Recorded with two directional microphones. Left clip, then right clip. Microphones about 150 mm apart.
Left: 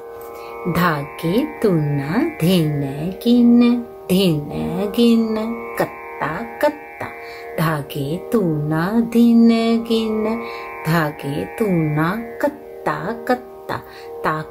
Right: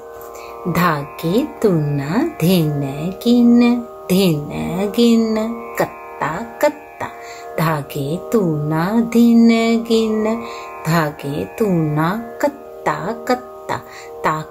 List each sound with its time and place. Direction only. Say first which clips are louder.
0.7 s music: right 2 dB; 15° right (ahead or behind)
11.9 s speech: right 1 dB; 10° right (ahead or behind)